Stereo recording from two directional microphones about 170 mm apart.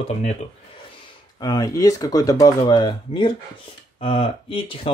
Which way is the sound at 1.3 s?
25° left (ahead or behind).